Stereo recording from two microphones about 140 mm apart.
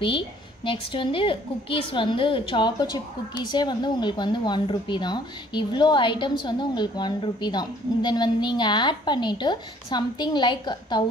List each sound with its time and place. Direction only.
0.7 s a woman's voice: 40° left (ahead or behind)